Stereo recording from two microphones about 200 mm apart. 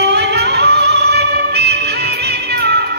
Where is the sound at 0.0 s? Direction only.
55° right (ahead or behind).